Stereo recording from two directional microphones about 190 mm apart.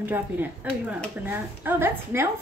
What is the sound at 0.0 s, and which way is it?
A woman's voice, 10° right (ahead or behind).